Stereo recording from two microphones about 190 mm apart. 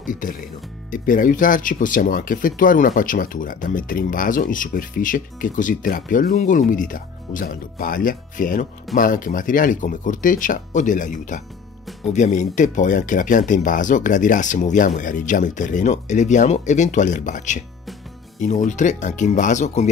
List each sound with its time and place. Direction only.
0.0 s speech: 45° left (ahead or behind)